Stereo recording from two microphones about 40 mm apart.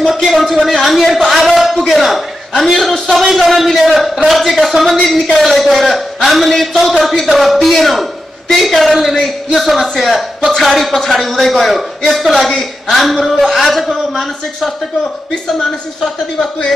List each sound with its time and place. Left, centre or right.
0.0 s speech: centre